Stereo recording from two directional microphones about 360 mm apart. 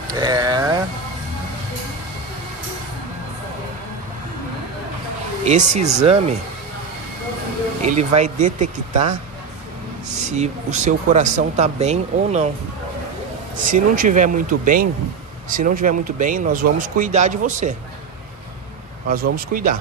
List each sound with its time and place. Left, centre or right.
0.1 s a sound: centre
5.4 s speech: centre
7.8 s speech: centre
13.6 s speech: right
19.3 s speech: right